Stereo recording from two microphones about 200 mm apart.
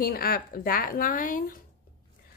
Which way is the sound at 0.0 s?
50° left (ahead or behind).